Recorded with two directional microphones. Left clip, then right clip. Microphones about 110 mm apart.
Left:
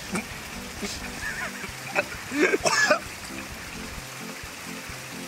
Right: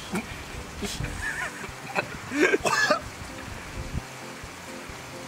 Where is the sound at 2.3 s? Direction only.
20° right (ahead or behind).